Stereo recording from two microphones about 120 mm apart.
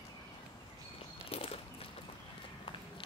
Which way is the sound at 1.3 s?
55° left (ahead or behind).